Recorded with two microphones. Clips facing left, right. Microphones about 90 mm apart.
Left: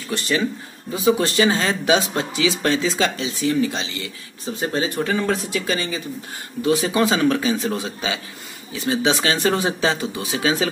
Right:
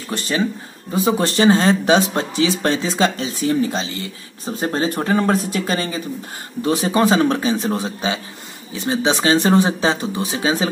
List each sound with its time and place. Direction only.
0.9 s speech: 35° right (ahead or behind)